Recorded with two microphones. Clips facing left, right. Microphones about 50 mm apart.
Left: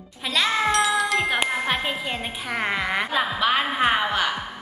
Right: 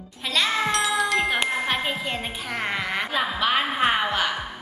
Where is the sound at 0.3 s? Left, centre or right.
Centre.